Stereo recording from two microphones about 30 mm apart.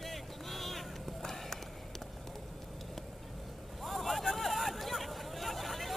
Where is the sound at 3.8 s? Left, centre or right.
Centre.